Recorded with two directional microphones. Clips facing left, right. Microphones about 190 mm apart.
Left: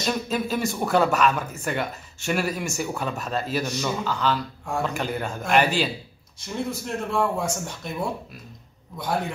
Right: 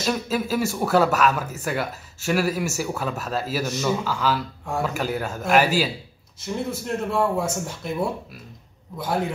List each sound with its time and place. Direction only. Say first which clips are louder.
0.0 s speech: right 1 dB; 5° right (ahead or behind)